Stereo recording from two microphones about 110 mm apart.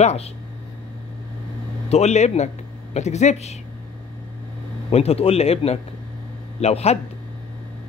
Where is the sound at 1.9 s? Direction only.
85° left.